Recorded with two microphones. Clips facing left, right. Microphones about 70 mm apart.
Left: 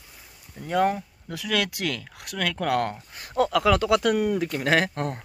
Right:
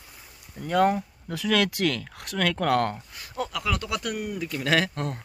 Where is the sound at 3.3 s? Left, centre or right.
Left.